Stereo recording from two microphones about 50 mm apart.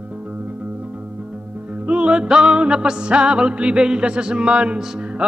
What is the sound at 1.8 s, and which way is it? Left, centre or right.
Music, right.